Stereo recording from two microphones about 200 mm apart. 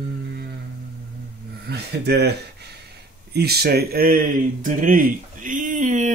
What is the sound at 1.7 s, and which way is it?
Speech, 55° right (ahead or behind).